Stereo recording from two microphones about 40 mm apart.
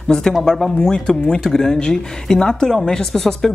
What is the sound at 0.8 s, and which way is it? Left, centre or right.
Speech, left.